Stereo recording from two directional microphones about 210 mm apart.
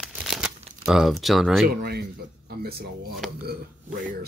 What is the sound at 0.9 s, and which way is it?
Speech, centre (ahead or behind).